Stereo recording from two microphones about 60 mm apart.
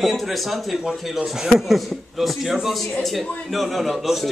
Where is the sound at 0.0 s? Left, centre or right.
Centre.